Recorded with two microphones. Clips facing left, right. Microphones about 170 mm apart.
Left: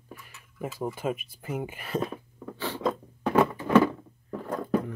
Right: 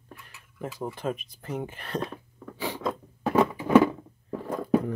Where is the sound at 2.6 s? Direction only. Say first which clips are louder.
Left 1 dB; 10° right (ahead or behind).